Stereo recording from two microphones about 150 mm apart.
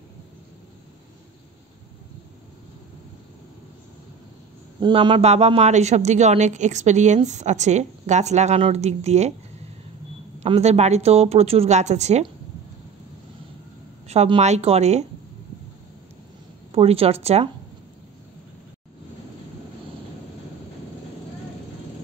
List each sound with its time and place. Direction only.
4.7 s a man's voice: 30° right (ahead or behind); by 9.3 s 45° right (ahead or behind)
10.4 s a man's voice: 45° right (ahead or behind)
14.0 s a man's voice: 40° right (ahead or behind)
16.7 s a woman's voice: 40° right (ahead or behind)